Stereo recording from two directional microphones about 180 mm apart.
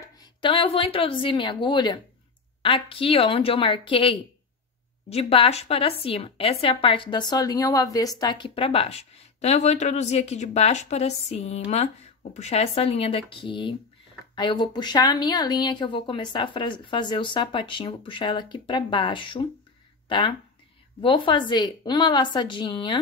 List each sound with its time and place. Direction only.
0.0 s a woman's voice: 25° left (ahead or behind)